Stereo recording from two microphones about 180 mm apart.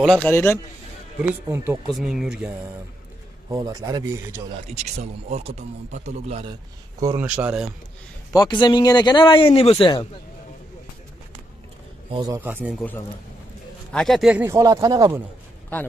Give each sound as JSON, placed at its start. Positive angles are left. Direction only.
{"t": 0.0, "sound": "a man's voice", "side_deg": 5}
{"t": 1.2, "sound": "speech", "side_deg": -10}
{"t": 2.0, "sound": "speech", "side_deg": 0}
{"t": 3.4, "sound": "speech", "side_deg": -20}
{"t": 4.9, "sound": "a man's voice", "side_deg": -40}
{"t": 7.0, "sound": "speech", "side_deg": -20}
{"t": 7.2, "sound": "speech", "side_deg": -5}
{"t": 8.3, "sound": "a man's voice", "side_deg": 20}
{"t": 12.1, "sound": "speech", "side_deg": -20}
{"t": 12.4, "sound": "speech", "side_deg": -10}
{"t": 13.9, "sound": "speech", "side_deg": 0}